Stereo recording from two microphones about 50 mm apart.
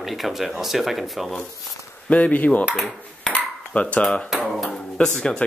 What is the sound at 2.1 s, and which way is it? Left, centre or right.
Speech, left.